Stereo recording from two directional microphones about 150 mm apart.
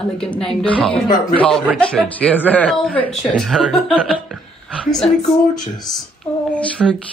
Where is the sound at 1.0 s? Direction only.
30° left (ahead or behind).